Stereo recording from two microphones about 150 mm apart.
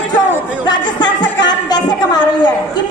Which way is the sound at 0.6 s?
30° left (ahead or behind).